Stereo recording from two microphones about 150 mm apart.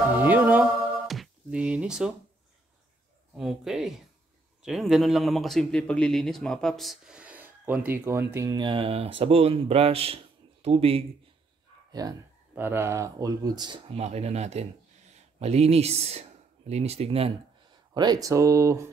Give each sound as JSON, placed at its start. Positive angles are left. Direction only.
{"t": 0.2, "sound": "music", "side_deg": -10}
{"t": 1.0, "sound": "a sound", "side_deg": 0}
{"t": 3.3, "sound": "a man's voice", "side_deg": 0}
{"t": 12.0, "sound": "speech", "side_deg": -25}
{"t": 13.9, "sound": "speech", "side_deg": -45}
{"t": 17.9, "sound": "speech", "side_deg": -25}